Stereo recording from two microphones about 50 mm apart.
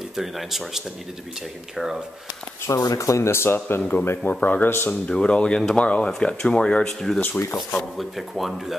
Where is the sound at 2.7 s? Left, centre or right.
Left.